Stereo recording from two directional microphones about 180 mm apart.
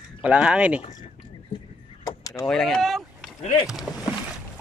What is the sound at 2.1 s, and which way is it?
Vehicle, 20° left (ahead or behind).